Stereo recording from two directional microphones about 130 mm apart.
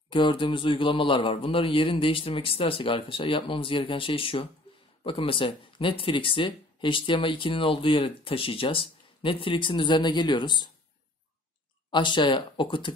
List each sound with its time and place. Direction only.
0.1 s a man's voice: 40° left (ahead or behind)
11.9 s speech: 35° left (ahead or behind)